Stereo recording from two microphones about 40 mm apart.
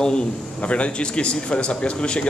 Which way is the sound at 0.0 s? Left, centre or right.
Left.